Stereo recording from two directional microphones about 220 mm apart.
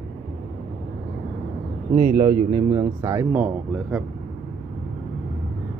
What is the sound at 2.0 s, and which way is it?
Speech, 40° right (ahead or behind).